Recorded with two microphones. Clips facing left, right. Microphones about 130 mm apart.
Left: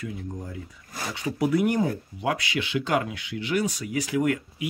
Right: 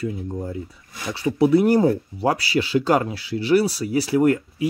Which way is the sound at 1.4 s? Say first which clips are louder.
Right 7 dB; 30° right (ahead or behind).